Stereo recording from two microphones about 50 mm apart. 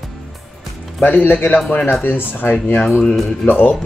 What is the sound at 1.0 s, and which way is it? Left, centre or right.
Speech, left.